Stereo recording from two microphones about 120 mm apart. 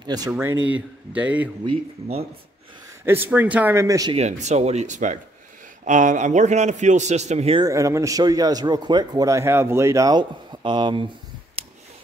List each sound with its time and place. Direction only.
0.0 s speech: 35° right (ahead or behind)
0.3 s speech: 20° right (ahead or behind)
1.7 s speech: 55° right (ahead or behind)
3.1 s speech: 15° right (ahead or behind)
3.7 s speech: 30° right (ahead or behind)
4.1 s a man's voice: 70° right (ahead or behind)
7.6 s speech: 25° right (ahead or behind)